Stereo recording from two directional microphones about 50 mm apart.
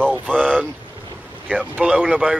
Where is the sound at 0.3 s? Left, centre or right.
Centre.